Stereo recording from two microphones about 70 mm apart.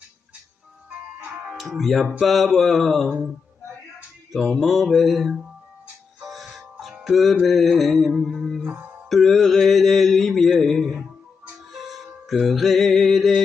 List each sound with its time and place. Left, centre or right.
0.8 s music: centre
1.7 s mantra: centre
4.3 s mantra: centre
6.2 s music: centre
7.1 s mantra: centre
8.7 s mantra: right
9.1 s mantra: centre
11.5 s music: centre
12.3 s mantra: centre